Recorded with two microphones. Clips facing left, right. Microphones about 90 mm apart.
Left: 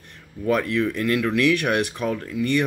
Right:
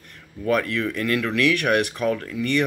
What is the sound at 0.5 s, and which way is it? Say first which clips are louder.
Speech: left 1 dB; 25° left (ahead or behind).